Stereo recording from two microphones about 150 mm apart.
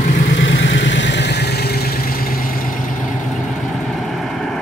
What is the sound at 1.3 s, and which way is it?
Vehicle, 90° left.